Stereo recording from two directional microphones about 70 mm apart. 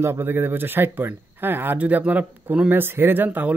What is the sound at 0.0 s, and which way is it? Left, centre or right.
Speech, right.